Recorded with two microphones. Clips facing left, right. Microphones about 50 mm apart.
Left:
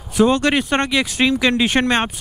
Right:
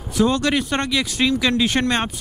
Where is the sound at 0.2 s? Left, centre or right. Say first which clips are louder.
Left 3 dB; left.